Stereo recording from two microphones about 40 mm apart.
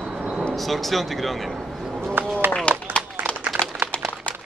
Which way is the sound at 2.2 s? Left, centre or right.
Right.